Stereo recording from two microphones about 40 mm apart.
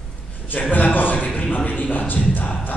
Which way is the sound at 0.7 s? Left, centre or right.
Left.